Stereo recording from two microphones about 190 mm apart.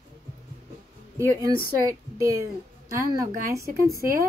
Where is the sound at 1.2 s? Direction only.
15° right (ahead or behind).